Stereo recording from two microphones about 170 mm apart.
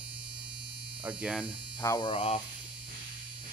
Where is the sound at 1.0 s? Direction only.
5° right (ahead or behind).